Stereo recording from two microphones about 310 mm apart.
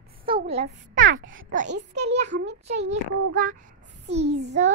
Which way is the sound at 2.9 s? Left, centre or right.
Right.